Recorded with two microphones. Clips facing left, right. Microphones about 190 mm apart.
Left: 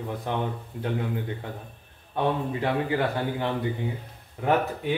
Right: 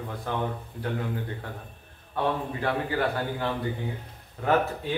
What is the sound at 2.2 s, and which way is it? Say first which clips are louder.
Speech: left 2 dB; 20° left (ahead or behind).